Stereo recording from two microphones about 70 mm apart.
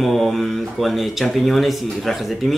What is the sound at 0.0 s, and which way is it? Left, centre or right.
Speech, centre.